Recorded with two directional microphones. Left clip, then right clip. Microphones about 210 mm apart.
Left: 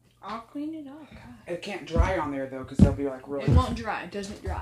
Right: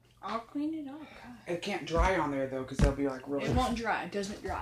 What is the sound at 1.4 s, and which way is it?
Speech, 10° right (ahead or behind).